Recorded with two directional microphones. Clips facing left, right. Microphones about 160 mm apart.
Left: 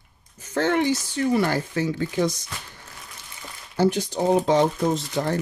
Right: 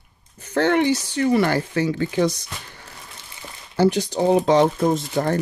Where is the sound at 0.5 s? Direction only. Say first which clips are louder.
Right 3 dB; 70° right (ahead or behind).